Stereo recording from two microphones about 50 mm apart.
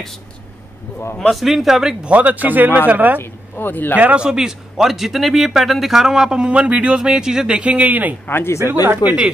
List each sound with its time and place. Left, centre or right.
1.3 s speech: centre
2.0 s speech: right
3.2 s speech: left
3.9 s speech: right
4.2 s speech: centre; by 8.2 s right
8.3 s speech: left
8.6 s speech: right